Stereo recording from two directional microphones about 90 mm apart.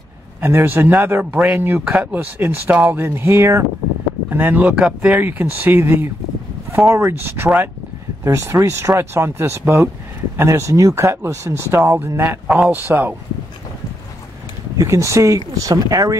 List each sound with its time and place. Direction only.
0.4 s a man's voice: 25° right (ahead or behind)
4.3 s a man's voice: 20° right (ahead or behind)
14.8 s speech: 35° right (ahead or behind)